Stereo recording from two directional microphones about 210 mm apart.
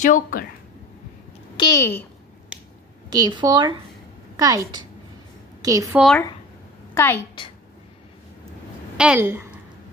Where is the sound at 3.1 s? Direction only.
20° right (ahead or behind).